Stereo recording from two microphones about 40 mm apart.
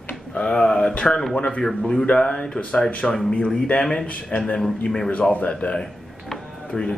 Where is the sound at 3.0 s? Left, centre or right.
Centre.